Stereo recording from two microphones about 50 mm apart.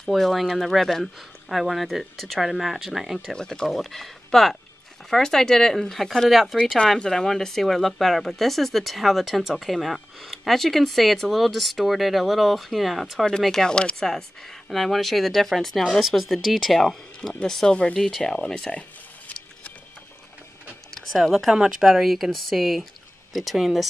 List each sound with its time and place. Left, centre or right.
0.1 s speech: centre
3.3 s speech: centre
7.0 s speech: centre
13.4 s speech: centre
13.7 s speech: centre
14.0 s speech: centre
18.7 s a sound: left
21.2 s speech: centre